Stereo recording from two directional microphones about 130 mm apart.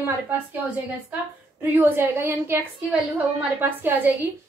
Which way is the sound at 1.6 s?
15° right (ahead or behind).